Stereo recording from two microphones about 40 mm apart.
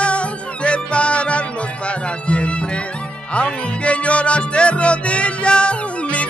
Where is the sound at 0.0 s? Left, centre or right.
Left.